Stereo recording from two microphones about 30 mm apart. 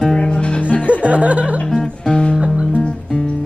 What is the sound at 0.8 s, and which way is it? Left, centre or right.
Speech, right.